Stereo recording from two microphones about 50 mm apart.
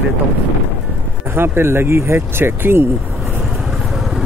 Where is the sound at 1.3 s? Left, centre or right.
Right.